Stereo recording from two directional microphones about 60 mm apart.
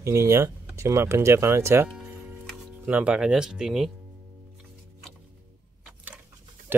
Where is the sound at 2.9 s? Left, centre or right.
Right.